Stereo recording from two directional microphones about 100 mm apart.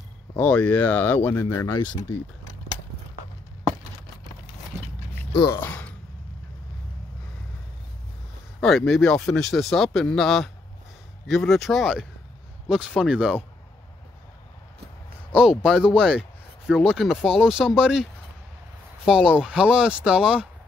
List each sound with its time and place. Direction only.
0.4 s speech: 15° left (ahead or behind)
5.5 s speech: 20° left (ahead or behind)
8.5 s speech: 5° left (ahead or behind)
12.6 s speech: 10° right (ahead or behind)
15.3 s speech: 5° right (ahead or behind)
19.0 s speech: 10° right (ahead or behind)